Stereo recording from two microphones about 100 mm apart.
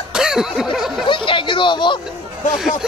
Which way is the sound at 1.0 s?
55° left (ahead or behind).